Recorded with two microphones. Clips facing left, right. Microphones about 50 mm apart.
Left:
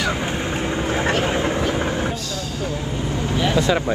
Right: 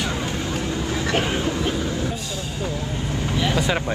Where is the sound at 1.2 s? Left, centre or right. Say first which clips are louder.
Left 3 dB; left.